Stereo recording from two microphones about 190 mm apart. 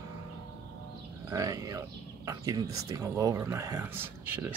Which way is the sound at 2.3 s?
20° right (ahead or behind).